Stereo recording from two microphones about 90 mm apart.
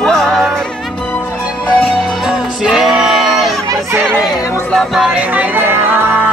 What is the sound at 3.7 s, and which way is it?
Chatter, 30° right (ahead or behind).